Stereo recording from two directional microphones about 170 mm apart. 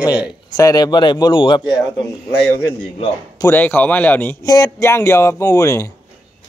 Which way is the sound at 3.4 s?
10° left (ahead or behind).